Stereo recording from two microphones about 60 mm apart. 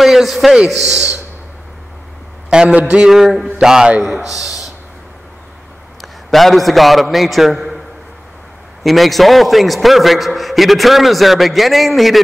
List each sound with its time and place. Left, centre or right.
0.0 s speech: centre
2.5 s mantra: centre
2.8 s a sound: right
3.1 s mantra: centre
4.0 s a man's voice: centre
5.9 s a man's voice: centre
8.8 s a man's voice: centre